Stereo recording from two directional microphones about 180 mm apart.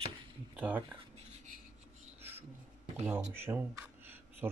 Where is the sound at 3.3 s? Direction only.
10° right (ahead or behind).